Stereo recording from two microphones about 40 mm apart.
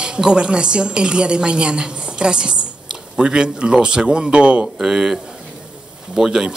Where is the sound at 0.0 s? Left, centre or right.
Right.